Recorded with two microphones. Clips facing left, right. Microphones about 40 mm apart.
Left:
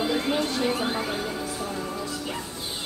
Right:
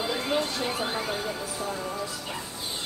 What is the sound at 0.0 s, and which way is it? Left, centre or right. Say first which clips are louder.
Music: left 2 dB; centre.